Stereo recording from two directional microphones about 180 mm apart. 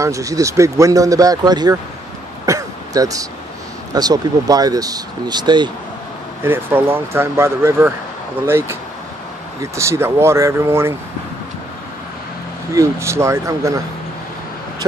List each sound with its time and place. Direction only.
0.0 s speech: 20° right (ahead or behind)
2.4 s throat clearing: 20° right (ahead or behind)
3.9 s speech: 20° right (ahead or behind)
6.4 s speech: 15° right (ahead or behind)
12.7 s speech: 15° right (ahead or behind)